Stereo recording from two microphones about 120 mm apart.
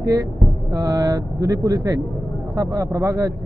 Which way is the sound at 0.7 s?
35° right (ahead or behind).